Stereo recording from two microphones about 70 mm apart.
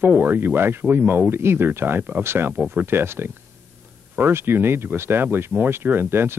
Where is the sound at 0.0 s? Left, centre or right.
Right.